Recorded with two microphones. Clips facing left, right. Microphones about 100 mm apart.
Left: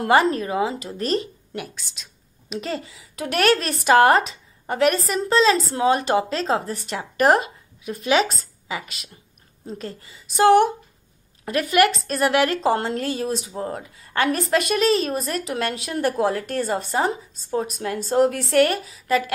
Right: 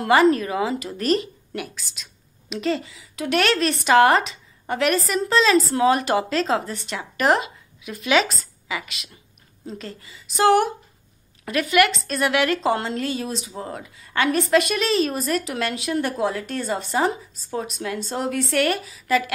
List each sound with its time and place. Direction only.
0.0 s a woman's voice: 35° left (ahead or behind)
13.6 s speech: 35° left (ahead or behind)
16.1 s a woman's voice: 50° left (ahead or behind)
16.9 s speech: 30° left (ahead or behind)
18.1 s a woman's voice: 50° left (ahead or behind)
18.5 s speech: 35° left (ahead or behind)